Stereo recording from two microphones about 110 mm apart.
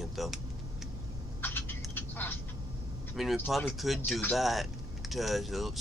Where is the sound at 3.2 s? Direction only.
Centre (ahead or behind).